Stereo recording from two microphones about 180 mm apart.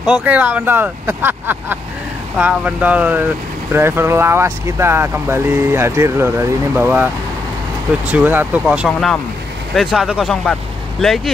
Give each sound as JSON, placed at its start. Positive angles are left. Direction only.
{"t": 0.0, "sound": "speech", "side_deg": -5}
{"t": 8.1, "sound": "speech", "side_deg": -10}